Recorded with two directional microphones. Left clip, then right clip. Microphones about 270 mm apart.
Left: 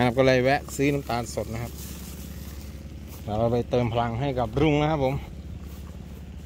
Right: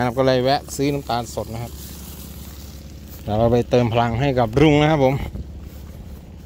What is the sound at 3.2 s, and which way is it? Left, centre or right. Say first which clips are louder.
Speech: right 7 dB; centre.